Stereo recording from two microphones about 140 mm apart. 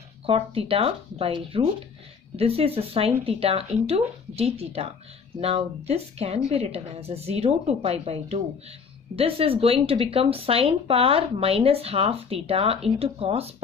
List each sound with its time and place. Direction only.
0.3 s speech: 45° right (ahead or behind)